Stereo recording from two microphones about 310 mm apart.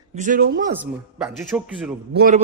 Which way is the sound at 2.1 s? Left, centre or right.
Right.